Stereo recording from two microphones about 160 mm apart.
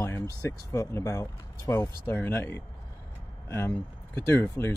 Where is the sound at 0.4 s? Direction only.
20° left (ahead or behind).